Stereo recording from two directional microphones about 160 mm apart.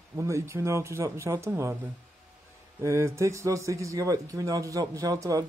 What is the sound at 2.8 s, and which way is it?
Speech, 15° right (ahead or behind).